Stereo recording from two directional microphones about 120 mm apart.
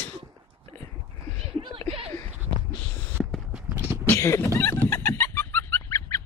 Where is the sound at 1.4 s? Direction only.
45° right (ahead or behind).